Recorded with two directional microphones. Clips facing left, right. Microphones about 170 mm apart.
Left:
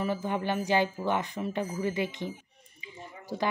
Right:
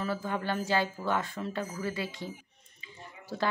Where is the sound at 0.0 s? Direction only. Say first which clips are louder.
Left 3 dB; 15° left (ahead or behind).